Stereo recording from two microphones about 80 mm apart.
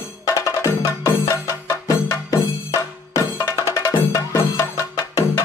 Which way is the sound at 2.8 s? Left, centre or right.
Left.